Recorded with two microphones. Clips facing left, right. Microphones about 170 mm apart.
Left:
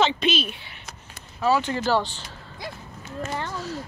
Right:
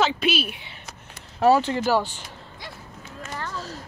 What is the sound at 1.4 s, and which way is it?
Speech, 75° right (ahead or behind).